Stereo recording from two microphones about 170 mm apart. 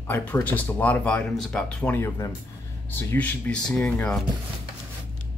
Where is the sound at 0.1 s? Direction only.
10° left (ahead or behind).